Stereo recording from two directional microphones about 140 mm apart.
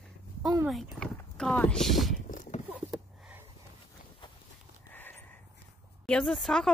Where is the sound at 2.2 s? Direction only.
65° left (ahead or behind).